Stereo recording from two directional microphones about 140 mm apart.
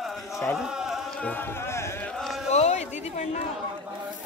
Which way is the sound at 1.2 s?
15° left (ahead or behind).